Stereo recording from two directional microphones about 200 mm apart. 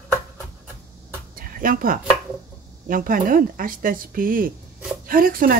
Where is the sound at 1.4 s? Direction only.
45° right (ahead or behind).